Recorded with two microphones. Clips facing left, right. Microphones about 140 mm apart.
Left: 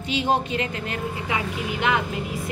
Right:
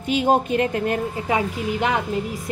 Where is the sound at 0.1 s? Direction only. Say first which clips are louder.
Right 5 dB; 50° right (ahead or behind).